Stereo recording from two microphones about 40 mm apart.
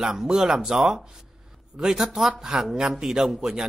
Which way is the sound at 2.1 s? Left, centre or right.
Centre.